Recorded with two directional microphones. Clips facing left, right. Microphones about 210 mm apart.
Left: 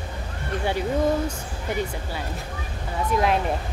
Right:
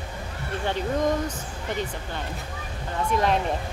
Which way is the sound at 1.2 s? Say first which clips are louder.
Left 2 dB; 10° left (ahead or behind).